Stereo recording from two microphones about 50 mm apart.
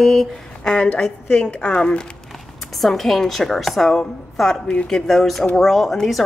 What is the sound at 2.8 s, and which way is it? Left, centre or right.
A woman's voice, centre.